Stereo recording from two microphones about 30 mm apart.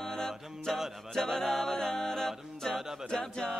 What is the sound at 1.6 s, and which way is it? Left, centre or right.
Speech, left.